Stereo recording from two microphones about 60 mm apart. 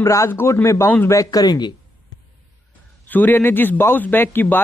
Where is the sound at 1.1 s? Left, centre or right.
Left.